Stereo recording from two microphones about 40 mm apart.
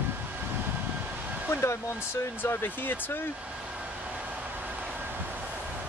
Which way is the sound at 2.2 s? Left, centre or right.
Left.